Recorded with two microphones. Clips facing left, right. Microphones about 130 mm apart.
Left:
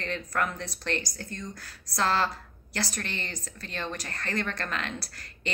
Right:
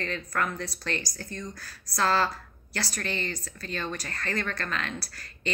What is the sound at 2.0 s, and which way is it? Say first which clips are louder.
A woman's voice: right 1 dB; 20° left (ahead or behind).